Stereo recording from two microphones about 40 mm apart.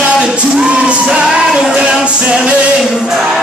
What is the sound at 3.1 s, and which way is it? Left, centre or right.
Music, centre.